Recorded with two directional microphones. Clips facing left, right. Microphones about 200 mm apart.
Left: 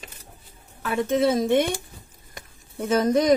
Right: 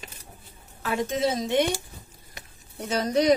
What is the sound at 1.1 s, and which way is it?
Speech, 55° left (ahead or behind).